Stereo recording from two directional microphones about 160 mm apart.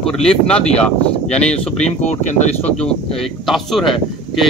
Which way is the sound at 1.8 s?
45° left (ahead or behind).